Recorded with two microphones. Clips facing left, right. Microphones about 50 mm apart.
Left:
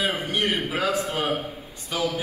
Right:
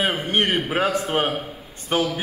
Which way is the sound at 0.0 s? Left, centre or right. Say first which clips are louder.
Right 3 dB; right.